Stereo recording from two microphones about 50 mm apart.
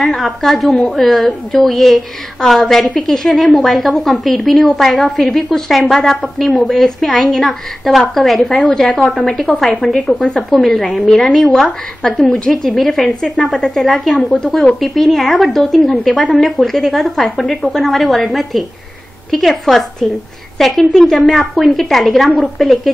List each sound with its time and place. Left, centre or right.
0.0 s a woman's voice: centre; by 10.4 s left
10.5 s a woman's voice: centre
14.1 s a woman's voice: centre
14.8 s a woman's voice: centre